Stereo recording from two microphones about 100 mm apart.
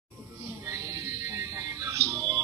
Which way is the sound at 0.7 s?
30° right (ahead or behind).